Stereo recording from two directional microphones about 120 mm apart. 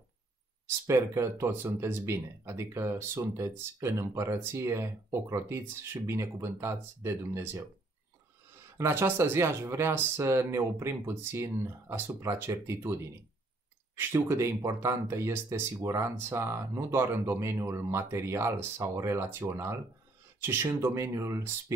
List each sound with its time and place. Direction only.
0.7 s speech: 25° right (ahead or behind)
8.7 s speech: 20° right (ahead or behind)